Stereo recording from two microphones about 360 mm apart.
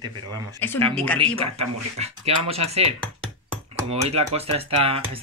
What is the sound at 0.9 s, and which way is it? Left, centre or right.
Speech, centre.